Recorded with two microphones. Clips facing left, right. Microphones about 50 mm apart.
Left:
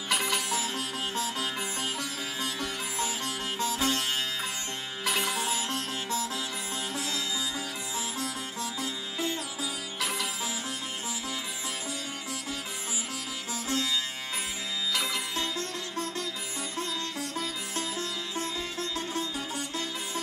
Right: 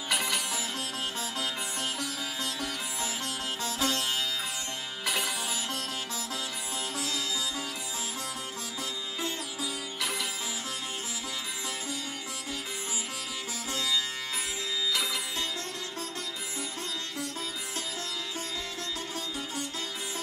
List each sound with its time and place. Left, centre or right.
0.1 s sitar: centre
3.0 s sitar: centre
3.8 s music: left
5.0 s sitar: centre
7.0 s sitar: centre
9.6 s music: centre